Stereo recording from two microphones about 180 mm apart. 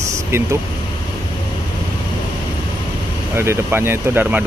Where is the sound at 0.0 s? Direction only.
15° right (ahead or behind).